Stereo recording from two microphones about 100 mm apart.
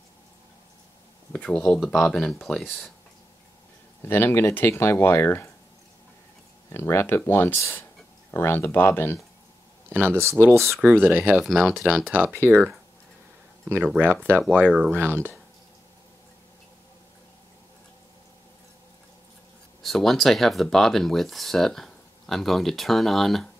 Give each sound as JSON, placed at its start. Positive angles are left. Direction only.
{"t": 1.3, "sound": "speech", "side_deg": 15}
{"t": 4.0, "sound": "speech", "side_deg": 25}
{"t": 6.7, "sound": "speech", "side_deg": 25}
{"t": 9.8, "sound": "speech", "side_deg": -20}
{"t": 11.3, "sound": "speech", "side_deg": 0}
{"t": 12.4, "sound": "speech", "side_deg": -20}
{"t": 13.8, "sound": "speech", "side_deg": -15}
{"t": 19.8, "sound": "speech", "side_deg": 0}